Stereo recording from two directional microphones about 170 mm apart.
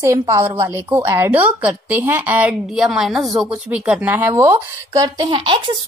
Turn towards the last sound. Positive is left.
turn(degrees=-30)  # may be behind; listen again after turning